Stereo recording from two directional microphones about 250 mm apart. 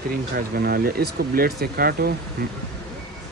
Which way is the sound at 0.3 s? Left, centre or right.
Right.